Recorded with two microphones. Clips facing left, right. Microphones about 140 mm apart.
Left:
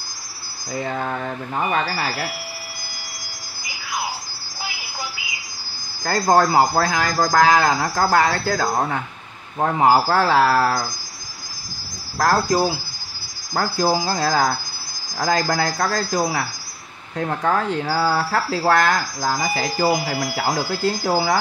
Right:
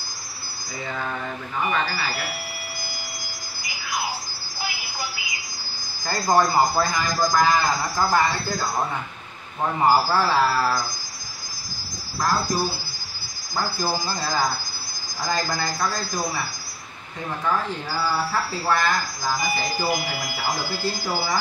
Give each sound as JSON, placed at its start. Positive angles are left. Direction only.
{"t": 0.7, "sound": "speech", "side_deg": 45}
{"t": 6.0, "sound": "a man's voice", "side_deg": 60}
{"t": 12.2, "sound": "speech", "side_deg": 70}
{"t": 17.2, "sound": "speech", "side_deg": 65}
{"t": 20.1, "sound": "speech", "side_deg": 40}
{"t": 20.8, "sound": "speech", "side_deg": 70}